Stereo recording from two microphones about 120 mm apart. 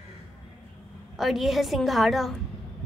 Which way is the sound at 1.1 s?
Centre (ahead or behind).